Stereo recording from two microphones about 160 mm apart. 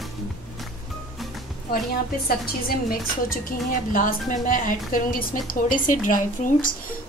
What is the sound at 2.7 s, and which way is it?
A woman's voice, 70° left (ahead or behind).